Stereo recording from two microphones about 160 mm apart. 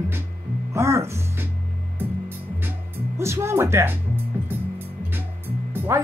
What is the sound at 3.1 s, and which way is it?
Speech, 15° right (ahead or behind).